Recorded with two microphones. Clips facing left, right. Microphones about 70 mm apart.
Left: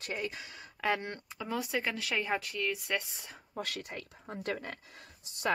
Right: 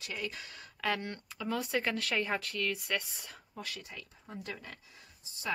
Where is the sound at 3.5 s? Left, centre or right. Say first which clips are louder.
Left 6 dB; left.